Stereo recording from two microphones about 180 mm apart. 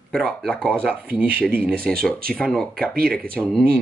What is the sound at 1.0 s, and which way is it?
Speech, 10° right (ahead or behind).